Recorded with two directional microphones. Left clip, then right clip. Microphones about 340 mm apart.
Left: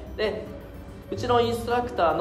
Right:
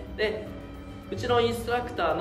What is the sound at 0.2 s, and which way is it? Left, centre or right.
Music, centre.